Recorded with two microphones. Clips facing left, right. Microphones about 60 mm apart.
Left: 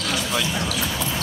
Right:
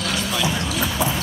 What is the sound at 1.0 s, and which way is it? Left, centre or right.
Clip-clop, centre.